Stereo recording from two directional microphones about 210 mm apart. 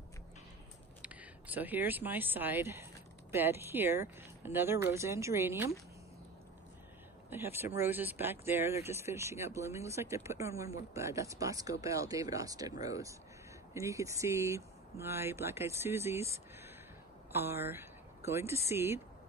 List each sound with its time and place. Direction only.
1.0 s speech: 10° right (ahead or behind)
7.2 s speech: 10° right (ahead or behind)